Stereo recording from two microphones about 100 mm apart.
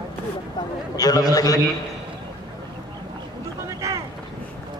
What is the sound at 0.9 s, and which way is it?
Speech, 40° left (ahead or behind).